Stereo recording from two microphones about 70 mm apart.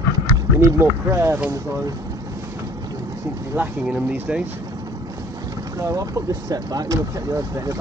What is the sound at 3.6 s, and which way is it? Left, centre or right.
Speech, centre.